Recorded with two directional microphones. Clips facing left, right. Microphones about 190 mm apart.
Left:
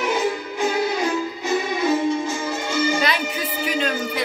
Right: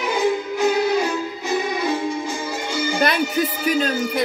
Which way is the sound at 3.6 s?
45° right (ahead or behind).